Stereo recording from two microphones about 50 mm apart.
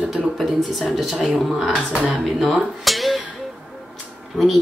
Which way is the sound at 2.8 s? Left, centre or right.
Centre.